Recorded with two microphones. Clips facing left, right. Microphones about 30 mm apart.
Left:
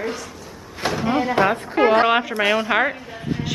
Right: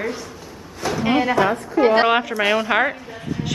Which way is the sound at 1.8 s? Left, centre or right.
Left.